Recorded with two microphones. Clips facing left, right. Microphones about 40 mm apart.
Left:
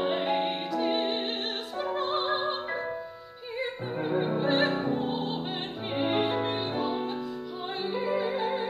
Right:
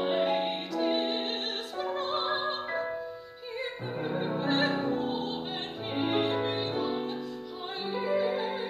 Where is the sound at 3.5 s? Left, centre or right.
Centre.